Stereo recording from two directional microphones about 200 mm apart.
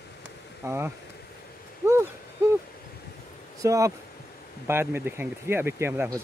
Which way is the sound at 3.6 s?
15° right (ahead or behind).